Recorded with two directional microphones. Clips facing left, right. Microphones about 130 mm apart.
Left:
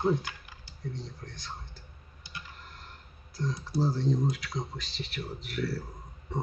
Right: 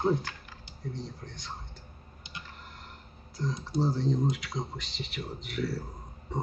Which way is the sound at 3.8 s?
Centre (ahead or behind).